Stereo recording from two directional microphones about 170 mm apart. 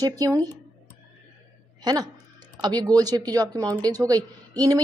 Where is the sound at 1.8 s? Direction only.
25° right (ahead or behind).